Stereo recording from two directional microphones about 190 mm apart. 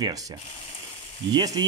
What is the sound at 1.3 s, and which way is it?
Speech, 20° right (ahead or behind).